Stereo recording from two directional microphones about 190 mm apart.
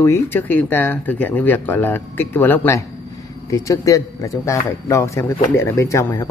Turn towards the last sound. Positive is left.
turn(degrees=15)  # may be behind; listen again after turning